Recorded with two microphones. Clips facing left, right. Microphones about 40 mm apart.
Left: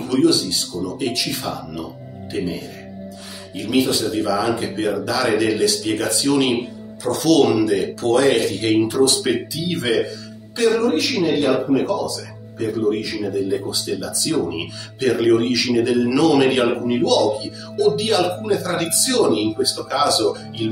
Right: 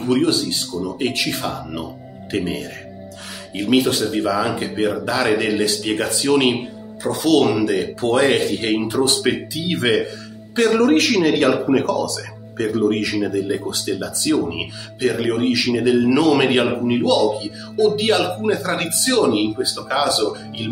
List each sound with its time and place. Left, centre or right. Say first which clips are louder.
0.1 s speech: left 1 dB; right
2.3 s speech: right 2 dB; right
4.1 s speech: even; right
10.5 s speech: right 2 dB; right
15.0 s speech: left 3 dB; centre
16.2 s speech: even; right
17.9 s speech: right 1 dB; right
20.2 s speech: left 2 dB; centre